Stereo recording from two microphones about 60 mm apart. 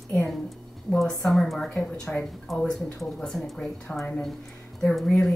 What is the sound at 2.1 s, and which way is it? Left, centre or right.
Speech, centre.